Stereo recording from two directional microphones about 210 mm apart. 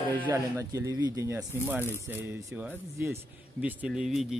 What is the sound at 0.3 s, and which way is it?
A man's voice, 15° right (ahead or behind).